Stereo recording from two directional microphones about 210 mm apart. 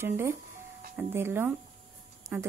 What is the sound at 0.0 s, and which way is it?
A woman's voice, 10° right (ahead or behind).